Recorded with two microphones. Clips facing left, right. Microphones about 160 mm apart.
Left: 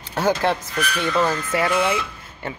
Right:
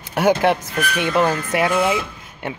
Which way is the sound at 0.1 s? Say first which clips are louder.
Right 4 dB; 15° right (ahead or behind).